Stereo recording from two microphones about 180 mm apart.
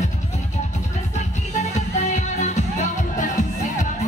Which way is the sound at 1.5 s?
40° left (ahead or behind).